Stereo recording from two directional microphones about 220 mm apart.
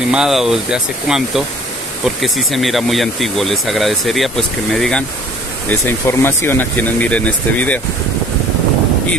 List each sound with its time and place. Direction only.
0.1 s speech: centre (ahead or behind)